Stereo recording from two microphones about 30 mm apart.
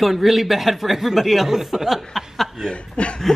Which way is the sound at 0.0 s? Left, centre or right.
Centre.